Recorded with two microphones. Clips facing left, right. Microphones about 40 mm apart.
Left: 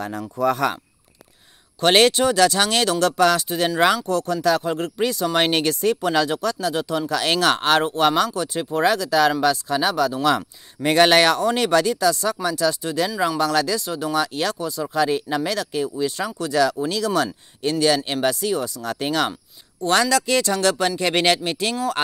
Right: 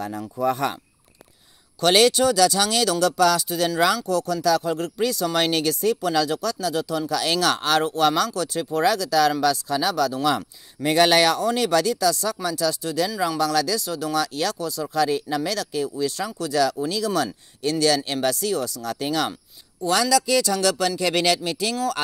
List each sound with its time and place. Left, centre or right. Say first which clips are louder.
0.0 s speech: left 1 dB; left
0.4 s speech: left 3 dB; left
1.8 s speech: left 1 dB; left
10.2 s speech: left 3 dB; left
17.6 s speech: left 1 dB; left
20.7 s speech: left 2 dB; left
21.0 s speech: left 2 dB; left